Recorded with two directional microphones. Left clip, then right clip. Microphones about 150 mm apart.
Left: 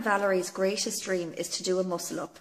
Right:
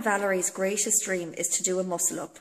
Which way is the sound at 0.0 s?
15° right (ahead or behind).